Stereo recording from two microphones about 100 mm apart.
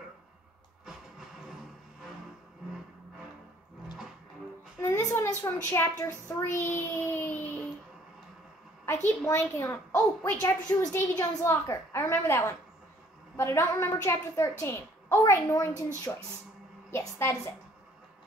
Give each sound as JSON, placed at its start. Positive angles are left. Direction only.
{"t": 4.8, "sound": "a sound", "side_deg": 25}
{"t": 5.7, "sound": "a child's voice", "side_deg": 30}
{"t": 8.8, "sound": "a woman's voice", "side_deg": 25}